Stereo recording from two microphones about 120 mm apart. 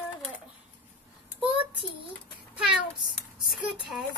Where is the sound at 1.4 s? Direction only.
50° right (ahead or behind).